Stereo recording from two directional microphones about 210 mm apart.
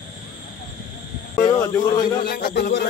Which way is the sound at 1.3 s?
20° left (ahead or behind).